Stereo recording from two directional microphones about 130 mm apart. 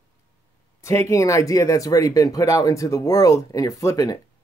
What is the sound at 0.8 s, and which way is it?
Speech, 20° left (ahead or behind).